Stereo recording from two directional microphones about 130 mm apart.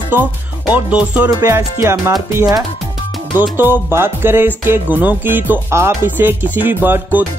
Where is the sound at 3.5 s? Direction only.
15° right (ahead or behind).